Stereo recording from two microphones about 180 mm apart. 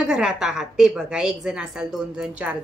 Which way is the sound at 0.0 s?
5° right (ahead or behind).